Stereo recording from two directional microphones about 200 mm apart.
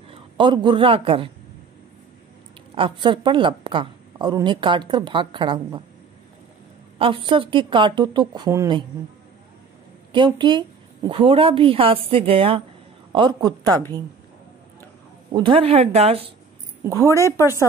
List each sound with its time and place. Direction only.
0.1 s a man's voice: 25° right (ahead or behind)
2.7 s a woman's voice: 25° right (ahead or behind)
7.0 s a woman's voice: 25° right (ahead or behind)
10.1 s a woman's voice: 25° right (ahead or behind)
15.3 s a woman's voice: 25° right (ahead or behind)
17.2 s speech: 15° left (ahead or behind)